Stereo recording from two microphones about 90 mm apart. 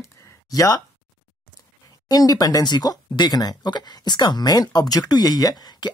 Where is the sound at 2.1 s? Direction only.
45° left (ahead or behind).